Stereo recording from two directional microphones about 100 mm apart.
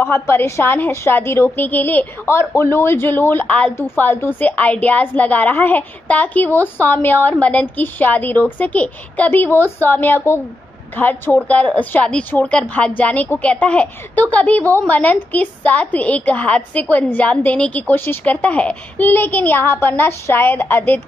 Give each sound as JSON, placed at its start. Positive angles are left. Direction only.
{"t": 0.0, "sound": "a woman's voice", "side_deg": 25}